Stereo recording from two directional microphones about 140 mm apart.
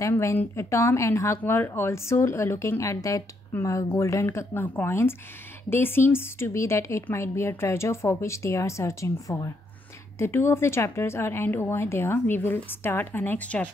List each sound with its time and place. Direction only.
0.0 s a woman's voice: 20° left (ahead or behind)